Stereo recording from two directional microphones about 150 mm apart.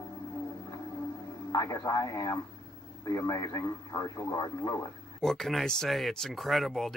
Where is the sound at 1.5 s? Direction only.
25° left (ahead or behind).